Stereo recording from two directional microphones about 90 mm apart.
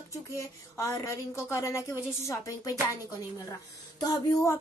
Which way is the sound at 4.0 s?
40° left (ahead or behind).